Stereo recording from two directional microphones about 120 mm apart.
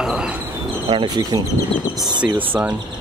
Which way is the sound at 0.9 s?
40° right (ahead or behind).